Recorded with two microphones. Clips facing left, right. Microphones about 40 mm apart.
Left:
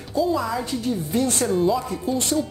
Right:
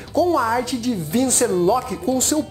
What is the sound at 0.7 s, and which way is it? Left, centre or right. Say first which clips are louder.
Speech: right 2 dB; right.